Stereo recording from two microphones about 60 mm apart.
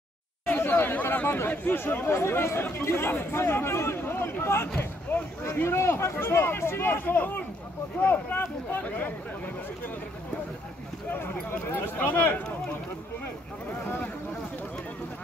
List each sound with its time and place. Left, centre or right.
0.5 s speech: left
2.1 s speech: left
11.6 s speech: left
13.7 s speech: left